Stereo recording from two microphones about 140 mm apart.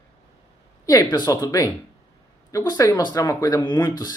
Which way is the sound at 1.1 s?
25° left (ahead or behind).